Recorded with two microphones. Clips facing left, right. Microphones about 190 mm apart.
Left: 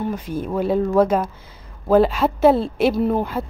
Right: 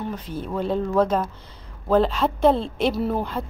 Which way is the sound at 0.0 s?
10° left (ahead or behind).